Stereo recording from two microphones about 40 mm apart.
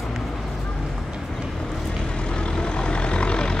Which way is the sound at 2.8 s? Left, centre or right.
Left.